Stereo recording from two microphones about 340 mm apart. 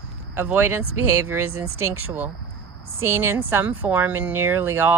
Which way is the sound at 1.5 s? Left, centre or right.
Right.